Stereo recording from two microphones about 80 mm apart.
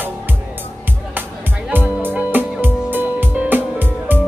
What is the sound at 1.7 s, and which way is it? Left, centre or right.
Music, right.